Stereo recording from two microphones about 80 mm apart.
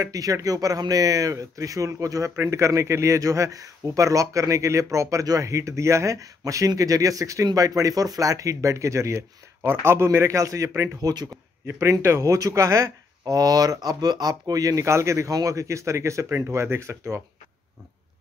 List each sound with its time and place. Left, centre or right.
0.0 s speech: right
11.6 s speech: right
14.4 s speech: right